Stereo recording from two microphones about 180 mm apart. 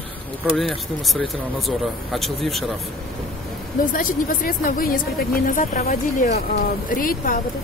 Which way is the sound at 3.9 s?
50° left (ahead or behind).